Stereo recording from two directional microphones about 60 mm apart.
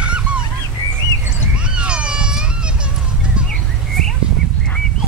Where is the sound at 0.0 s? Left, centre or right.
Centre.